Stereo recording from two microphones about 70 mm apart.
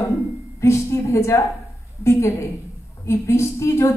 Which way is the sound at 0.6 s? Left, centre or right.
Left.